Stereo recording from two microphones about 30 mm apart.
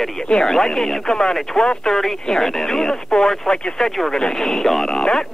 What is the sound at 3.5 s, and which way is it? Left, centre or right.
Speech, left.